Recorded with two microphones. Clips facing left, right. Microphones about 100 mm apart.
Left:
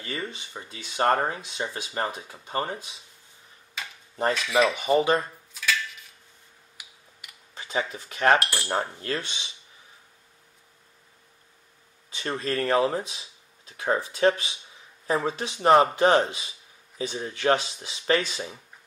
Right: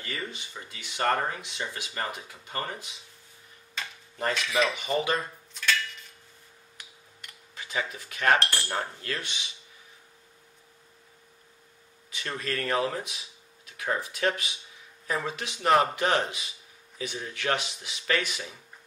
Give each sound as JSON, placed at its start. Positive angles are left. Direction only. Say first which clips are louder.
{"t": 0.0, "sound": "speech", "louder": "left 3 dB", "side_deg": 20}
{"t": 3.8, "sound": "tick-tock", "louder": "even", "side_deg": 5}
{"t": 4.3, "sound": "cutlery", "louder": "left 4 dB", "side_deg": 5}
{"t": 4.7, "sound": "speech", "louder": "left 6 dB", "side_deg": 30}
{"t": 5.5, "sound": "dishes", "louder": "even", "side_deg": 5}
{"t": 6.8, "sound": "tick-tock", "louder": "even", "side_deg": 5}
{"t": 7.5, "sound": "a sound", "louder": "left 4 dB", "side_deg": 30}
{"t": 7.9, "sound": "speech", "louder": "left 3 dB", "side_deg": 30}
{"t": 8.4, "sound": "cutlery", "louder": "left 1 dB", "side_deg": 5}
{"t": 9.0, "sound": "speech", "louder": "left 4 dB", "side_deg": 25}
{"t": 12.1, "sound": "speech", "louder": "left 4 dB", "side_deg": 30}